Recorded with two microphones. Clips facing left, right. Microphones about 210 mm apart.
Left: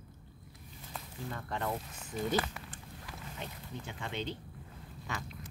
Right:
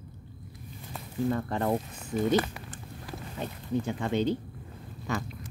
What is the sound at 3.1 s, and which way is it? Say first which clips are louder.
Speech: right 8 dB; 40° right (ahead or behind).